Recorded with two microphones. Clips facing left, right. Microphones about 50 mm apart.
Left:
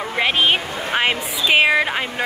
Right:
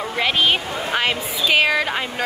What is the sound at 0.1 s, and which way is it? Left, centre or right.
A woman's voice, left.